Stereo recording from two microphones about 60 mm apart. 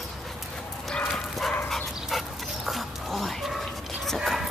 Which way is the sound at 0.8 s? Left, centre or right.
Centre.